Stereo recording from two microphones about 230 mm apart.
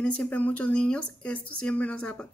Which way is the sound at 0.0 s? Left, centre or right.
Centre.